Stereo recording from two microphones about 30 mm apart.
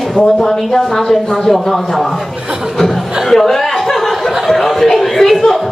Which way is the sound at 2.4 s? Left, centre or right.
Right.